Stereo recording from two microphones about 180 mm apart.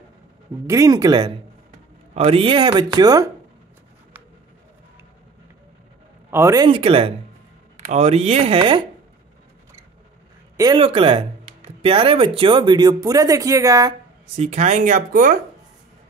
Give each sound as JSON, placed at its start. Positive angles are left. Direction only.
{"t": 0.7, "sound": "speech", "side_deg": -20}
{"t": 6.3, "sound": "speech", "side_deg": -15}
{"t": 10.6, "sound": "speech", "side_deg": -25}
{"t": 14.3, "sound": "speech", "side_deg": -40}